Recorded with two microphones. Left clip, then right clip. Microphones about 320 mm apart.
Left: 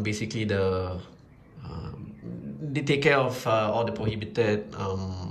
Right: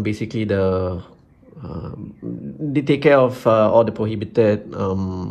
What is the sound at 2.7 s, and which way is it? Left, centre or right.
Speech, centre.